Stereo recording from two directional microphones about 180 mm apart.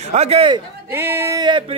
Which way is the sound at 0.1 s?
35° right (ahead or behind).